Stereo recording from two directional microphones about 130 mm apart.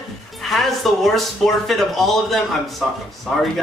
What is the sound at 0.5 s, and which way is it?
A man's voice, centre (ahead or behind).